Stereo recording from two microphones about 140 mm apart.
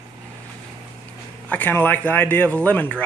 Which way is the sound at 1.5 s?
10° left (ahead or behind).